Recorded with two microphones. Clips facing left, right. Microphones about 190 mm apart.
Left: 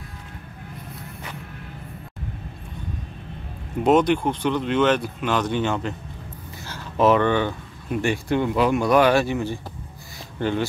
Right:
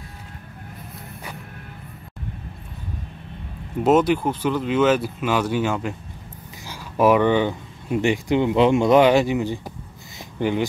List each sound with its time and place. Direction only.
3.8 s speech: 5° right (ahead or behind)